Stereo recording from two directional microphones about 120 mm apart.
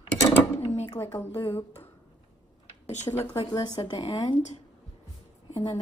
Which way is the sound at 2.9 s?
75° left (ahead or behind).